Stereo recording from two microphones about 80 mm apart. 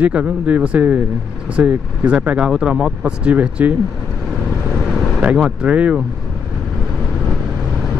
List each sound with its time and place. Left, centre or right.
0.0 s speech: centre
4.7 s vehicle: centre
5.2 s speech: centre